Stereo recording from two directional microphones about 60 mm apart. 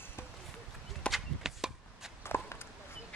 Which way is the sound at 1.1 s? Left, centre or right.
Centre.